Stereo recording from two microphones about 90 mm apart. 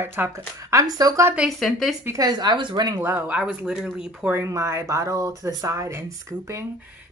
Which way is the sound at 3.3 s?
10° right (ahead or behind).